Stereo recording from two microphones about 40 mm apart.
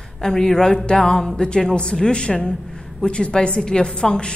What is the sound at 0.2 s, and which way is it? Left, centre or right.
A woman's voice, centre.